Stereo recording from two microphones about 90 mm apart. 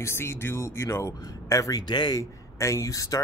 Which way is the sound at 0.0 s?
30° left (ahead or behind).